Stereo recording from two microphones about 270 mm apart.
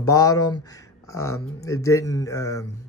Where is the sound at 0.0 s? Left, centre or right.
Centre.